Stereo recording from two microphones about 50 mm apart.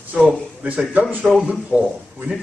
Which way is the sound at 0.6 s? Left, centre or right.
Right.